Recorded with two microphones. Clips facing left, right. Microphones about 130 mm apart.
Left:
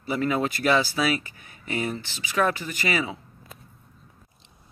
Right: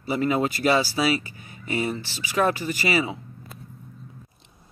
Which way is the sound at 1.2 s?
55° left (ahead or behind).